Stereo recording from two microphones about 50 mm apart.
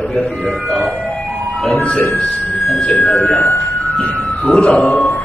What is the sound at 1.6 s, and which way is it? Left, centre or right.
Speech, left.